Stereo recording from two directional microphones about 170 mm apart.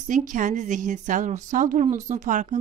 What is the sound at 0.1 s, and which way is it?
Speech, 50° right (ahead or behind).